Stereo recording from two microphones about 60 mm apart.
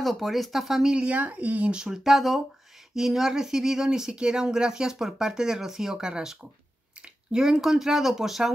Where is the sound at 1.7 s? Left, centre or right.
Centre.